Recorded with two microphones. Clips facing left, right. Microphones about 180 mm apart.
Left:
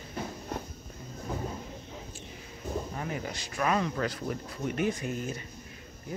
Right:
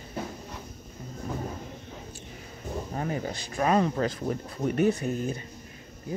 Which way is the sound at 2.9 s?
35° right (ahead or behind).